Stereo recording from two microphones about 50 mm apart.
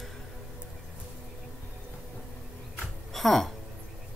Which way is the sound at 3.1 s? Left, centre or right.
Centre.